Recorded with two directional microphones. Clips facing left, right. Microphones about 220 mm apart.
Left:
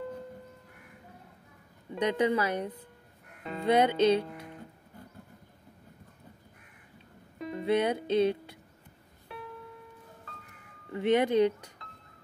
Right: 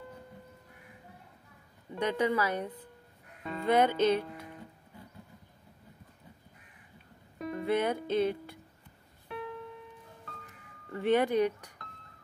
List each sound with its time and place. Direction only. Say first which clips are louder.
2.0 s speech: left 2 dB; 20° left (ahead or behind)
7.5 s music: left 2 dB; 20° left (ahead or behind)
10.9 s speech: left 1 dB; 20° left (ahead or behind)